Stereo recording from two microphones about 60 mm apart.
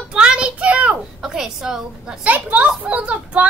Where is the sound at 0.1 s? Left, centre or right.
Centre.